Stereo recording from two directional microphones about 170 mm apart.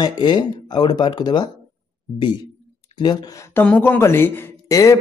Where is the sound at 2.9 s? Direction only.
25° left (ahead or behind).